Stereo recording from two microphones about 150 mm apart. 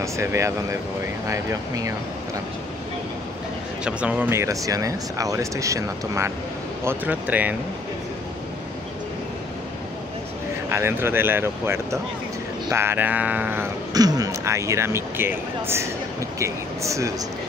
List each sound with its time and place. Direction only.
0.0 s speech: 20° right (ahead or behind)
3.8 s speech: 10° right (ahead or behind)
10.7 s speech: 15° right (ahead or behind)
13.9 s speech: 25° right (ahead or behind)